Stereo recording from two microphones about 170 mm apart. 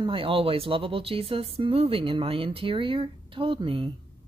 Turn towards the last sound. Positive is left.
turn(degrees=-30)  # may be behind; listen again after turning